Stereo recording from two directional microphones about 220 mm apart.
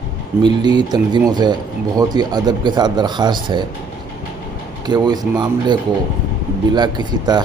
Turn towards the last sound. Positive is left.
turn(degrees=-20)  # may be behind; listen again after turning